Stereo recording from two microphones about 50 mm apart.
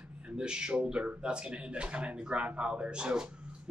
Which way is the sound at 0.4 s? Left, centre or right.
Centre.